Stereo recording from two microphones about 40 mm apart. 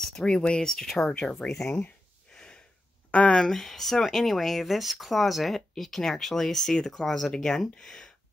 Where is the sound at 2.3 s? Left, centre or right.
Centre.